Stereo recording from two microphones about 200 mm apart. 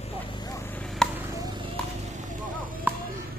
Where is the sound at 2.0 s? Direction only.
40° right (ahead or behind).